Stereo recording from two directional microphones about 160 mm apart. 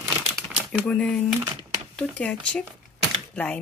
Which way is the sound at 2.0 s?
5° left (ahead or behind).